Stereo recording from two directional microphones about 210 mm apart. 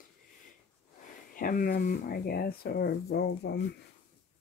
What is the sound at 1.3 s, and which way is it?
Speech, 40° left (ahead or behind).